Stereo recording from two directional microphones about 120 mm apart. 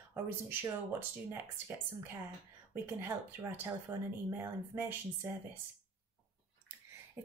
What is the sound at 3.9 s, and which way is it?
Speech, 20° right (ahead or behind).